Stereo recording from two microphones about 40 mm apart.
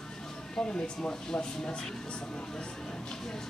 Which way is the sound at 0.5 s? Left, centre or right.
Left.